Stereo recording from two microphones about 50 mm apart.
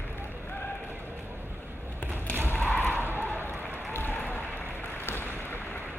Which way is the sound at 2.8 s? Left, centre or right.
Right.